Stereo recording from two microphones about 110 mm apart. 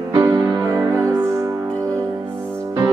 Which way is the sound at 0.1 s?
30° right (ahead or behind).